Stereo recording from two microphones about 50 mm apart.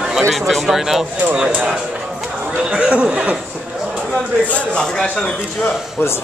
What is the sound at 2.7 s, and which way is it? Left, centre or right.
Speech, right.